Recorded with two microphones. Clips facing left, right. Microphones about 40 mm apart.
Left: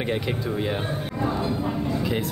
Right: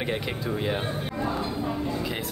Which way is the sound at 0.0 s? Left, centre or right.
Centre.